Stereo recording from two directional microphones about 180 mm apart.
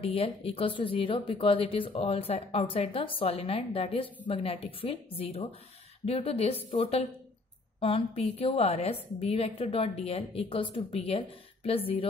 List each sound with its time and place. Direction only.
0.0 s a woman's voice: 30° left (ahead or behind)